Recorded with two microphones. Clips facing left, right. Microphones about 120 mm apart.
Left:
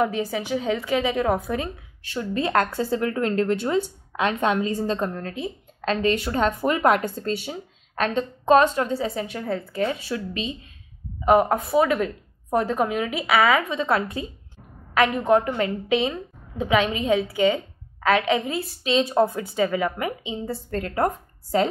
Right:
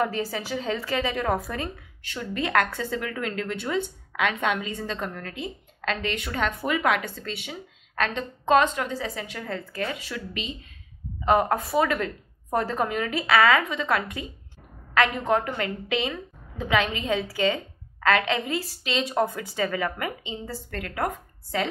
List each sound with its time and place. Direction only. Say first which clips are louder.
0.0 s a woman's voice: left 3 dB; 10° left (ahead or behind); by 5.3 s 30° left (ahead or behind)
5.8 s a sound: left 5 dB; 20° left (ahead or behind)
6.0 s a woman's voice: left 8 dB; 35° left (ahead or behind)
7.9 s a woman's voice: left 4 dB; 20° left (ahead or behind)
8.5 s a woman's voice: left 3 dB; 30° left (ahead or behind)
9.4 s a woman's voice: left 6 dB; 15° left (ahead or behind)
9.9 s a woman's voice: left 5 dB; 30° left (ahead or behind)
11.7 s a woman's voice: left 5 dB; 15° left (ahead or behind)
13.6 s a woman's voice: left 3 dB; 25° left (ahead or behind)
18.9 s a woman's voice: left 6 dB; 25° left (ahead or behind)